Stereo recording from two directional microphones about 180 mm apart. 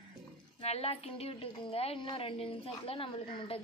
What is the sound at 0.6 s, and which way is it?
A woman's voice, 35° left (ahead or behind).